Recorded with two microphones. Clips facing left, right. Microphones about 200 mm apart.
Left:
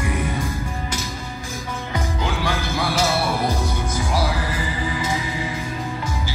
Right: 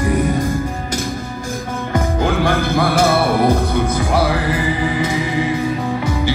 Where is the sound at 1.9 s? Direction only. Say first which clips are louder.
Right 8 dB; 50° right (ahead or behind).